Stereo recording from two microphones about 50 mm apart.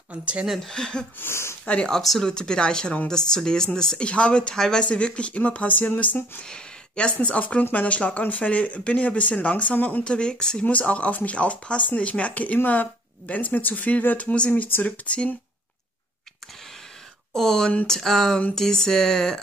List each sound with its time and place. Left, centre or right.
0.1 s speech: right
0.7 s speech: centre
1.2 s speech: left
1.9 s speech: centre
2.2 s speech: centre; by 6.4 s left
6.4 s a sound: centre
7.2 s speech: left
10.0 s speech: centre
10.6 s speech: left
14.5 s speech: left
15.0 s speech: left
17.3 s speech: centre